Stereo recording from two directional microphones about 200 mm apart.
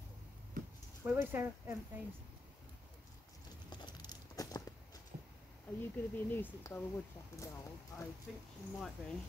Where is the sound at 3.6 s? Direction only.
20° left (ahead or behind).